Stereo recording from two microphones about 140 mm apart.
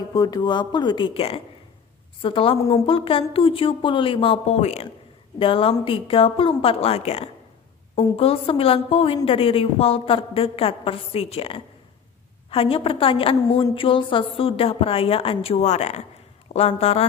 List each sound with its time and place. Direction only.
0.1 s a woman's voice: 30° left (ahead or behind); by 4.8 s 50° left (ahead or behind)
5.4 s a woman's voice: 40° left (ahead or behind)